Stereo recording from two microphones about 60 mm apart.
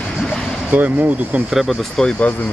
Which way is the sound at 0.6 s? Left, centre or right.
Right.